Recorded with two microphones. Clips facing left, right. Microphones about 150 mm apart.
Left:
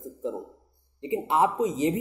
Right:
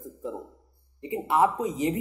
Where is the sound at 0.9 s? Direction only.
25° left (ahead or behind).